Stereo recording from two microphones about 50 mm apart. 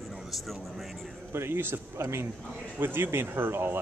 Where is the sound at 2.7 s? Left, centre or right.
Right.